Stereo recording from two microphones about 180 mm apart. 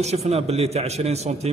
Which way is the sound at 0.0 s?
35° right (ahead or behind).